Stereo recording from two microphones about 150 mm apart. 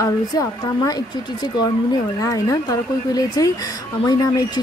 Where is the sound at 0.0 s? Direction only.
25° left (ahead or behind).